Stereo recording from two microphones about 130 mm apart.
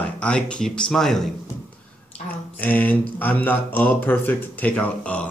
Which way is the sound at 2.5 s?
10° left (ahead or behind).